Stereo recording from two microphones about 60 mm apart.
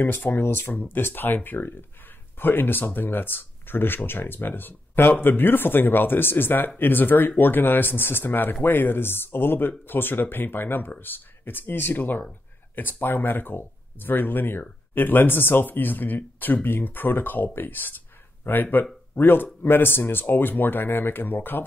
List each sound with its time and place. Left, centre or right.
0.0 s speech: left